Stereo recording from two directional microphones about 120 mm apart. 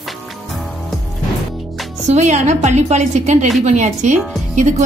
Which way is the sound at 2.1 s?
75° right (ahead or behind).